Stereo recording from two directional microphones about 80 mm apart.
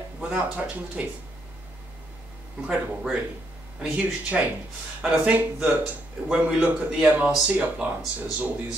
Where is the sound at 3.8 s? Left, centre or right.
Centre.